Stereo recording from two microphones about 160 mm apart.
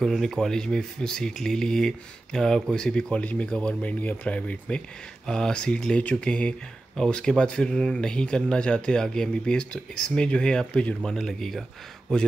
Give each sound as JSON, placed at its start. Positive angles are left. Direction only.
{"t": 0.0, "sound": "speech", "side_deg": 0}